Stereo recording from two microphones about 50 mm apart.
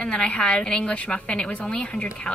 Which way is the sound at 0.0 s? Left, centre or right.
Left.